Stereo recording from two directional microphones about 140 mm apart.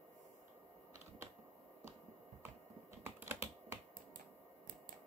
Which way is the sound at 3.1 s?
15° right (ahead or behind).